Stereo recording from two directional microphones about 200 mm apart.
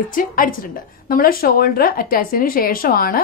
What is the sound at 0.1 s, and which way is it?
Speech, 45° left (ahead or behind).